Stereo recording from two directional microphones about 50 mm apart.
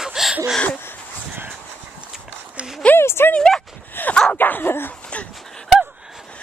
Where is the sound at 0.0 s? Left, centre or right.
Centre.